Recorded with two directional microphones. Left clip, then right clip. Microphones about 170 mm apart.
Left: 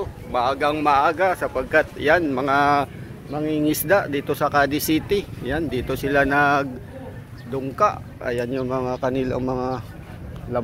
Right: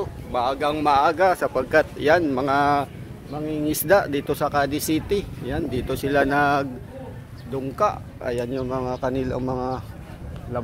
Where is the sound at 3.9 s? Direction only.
25° right (ahead or behind).